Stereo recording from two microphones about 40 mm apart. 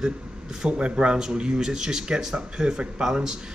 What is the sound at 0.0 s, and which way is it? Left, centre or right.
Speech, centre.